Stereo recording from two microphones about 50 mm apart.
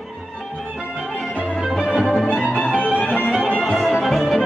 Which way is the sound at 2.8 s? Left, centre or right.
Left.